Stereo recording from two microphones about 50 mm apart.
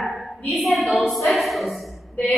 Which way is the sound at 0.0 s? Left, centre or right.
Centre.